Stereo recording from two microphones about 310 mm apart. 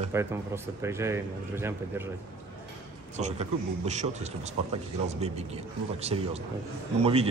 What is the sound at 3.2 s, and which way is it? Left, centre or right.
A man's voice, right.